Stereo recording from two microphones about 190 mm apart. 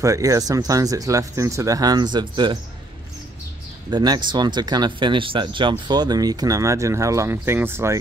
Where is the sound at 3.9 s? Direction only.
20° right (ahead or behind).